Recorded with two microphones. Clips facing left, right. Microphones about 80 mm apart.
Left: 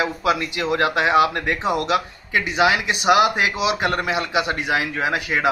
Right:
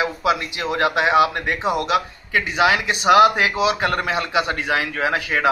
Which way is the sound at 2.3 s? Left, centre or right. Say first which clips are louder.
Even; right.